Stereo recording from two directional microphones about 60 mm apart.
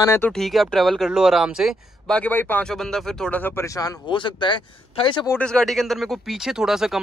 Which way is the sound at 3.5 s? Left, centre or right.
Left.